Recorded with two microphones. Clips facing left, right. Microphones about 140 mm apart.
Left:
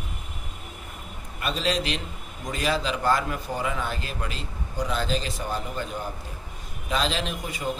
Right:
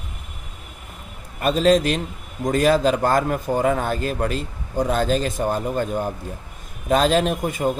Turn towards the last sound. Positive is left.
turn(degrees=-50)  # may be behind; listen again after turning